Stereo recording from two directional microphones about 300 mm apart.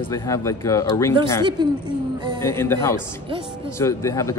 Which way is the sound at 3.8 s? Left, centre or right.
Centre.